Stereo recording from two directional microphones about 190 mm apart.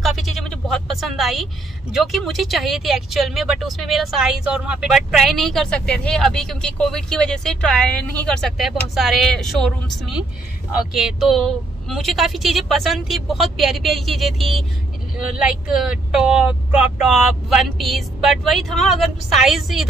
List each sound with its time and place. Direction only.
0.0 s a woman's voice: centre (ahead or behind)